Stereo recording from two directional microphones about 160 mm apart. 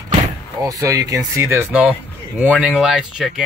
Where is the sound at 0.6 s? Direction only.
20° right (ahead or behind); by 3.4 s 5° right (ahead or behind).